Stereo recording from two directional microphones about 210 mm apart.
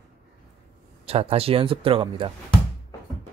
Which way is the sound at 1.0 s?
30° right (ahead or behind).